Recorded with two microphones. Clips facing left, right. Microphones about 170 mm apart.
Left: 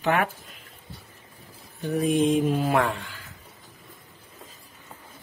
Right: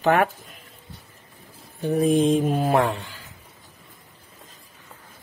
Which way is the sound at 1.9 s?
30° right (ahead or behind).